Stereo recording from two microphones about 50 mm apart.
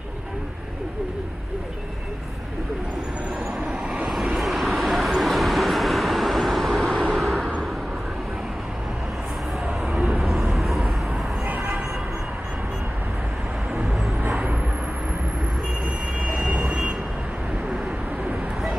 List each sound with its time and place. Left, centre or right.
4.3 s vehicle: centre
9.9 s vehicle: centre
11.4 s vehicle: right
16.2 s train: right